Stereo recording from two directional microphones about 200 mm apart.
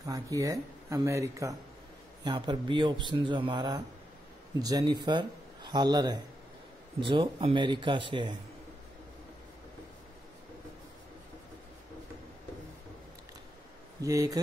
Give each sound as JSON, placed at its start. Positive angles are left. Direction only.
{"t": 0.0, "sound": "a man's voice", "side_deg": -15}
{"t": 14.0, "sound": "speech", "side_deg": -15}